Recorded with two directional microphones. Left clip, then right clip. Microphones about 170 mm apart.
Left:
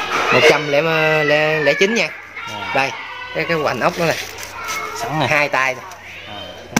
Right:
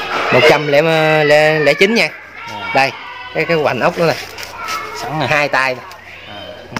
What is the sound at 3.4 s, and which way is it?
Speech, 55° right (ahead or behind).